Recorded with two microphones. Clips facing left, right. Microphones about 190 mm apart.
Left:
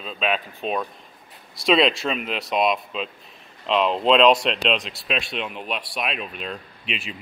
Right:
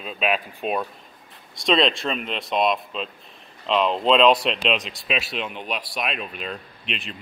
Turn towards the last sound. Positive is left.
turn(degrees=0)  # may be behind; listen again after turning